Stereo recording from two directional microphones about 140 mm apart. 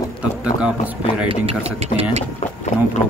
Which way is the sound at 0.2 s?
10° right (ahead or behind).